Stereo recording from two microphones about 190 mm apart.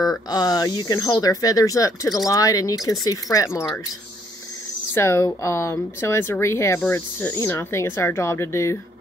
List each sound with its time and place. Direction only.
0.3 s speech: 20° left (ahead or behind)
4.9 s speech: 15° left (ahead or behind)